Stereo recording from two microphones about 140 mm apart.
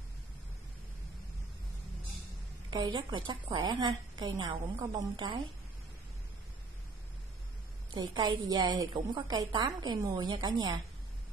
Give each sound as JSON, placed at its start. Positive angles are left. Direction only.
{"t": 2.7, "sound": "a woman's voice", "side_deg": -30}
{"t": 7.9, "sound": "a woman's voice", "side_deg": -30}